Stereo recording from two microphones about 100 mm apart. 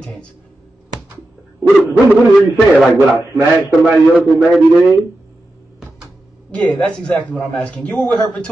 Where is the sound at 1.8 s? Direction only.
15° right (ahead or behind).